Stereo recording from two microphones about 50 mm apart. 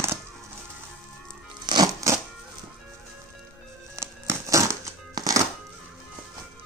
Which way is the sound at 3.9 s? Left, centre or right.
Right.